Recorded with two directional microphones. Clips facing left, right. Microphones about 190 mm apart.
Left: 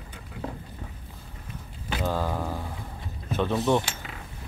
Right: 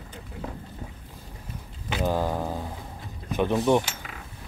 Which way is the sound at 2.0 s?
15° right (ahead or behind).